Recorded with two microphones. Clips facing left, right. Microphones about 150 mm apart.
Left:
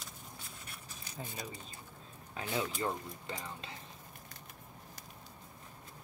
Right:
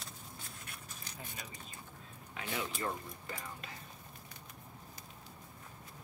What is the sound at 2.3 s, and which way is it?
Speech, 25° left (ahead or behind).